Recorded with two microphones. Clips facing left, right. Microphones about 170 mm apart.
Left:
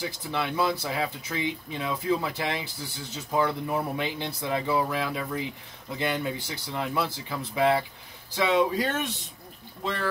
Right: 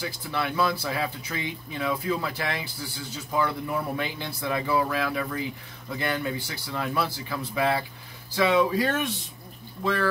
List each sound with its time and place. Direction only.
0.0 s speech: 20° left (ahead or behind)